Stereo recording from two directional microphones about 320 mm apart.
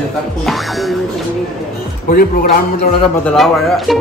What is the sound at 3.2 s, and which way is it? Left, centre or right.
Speech, centre.